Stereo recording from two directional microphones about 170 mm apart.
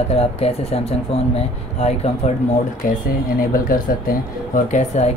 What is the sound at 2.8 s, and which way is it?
Speech, 55° left (ahead or behind).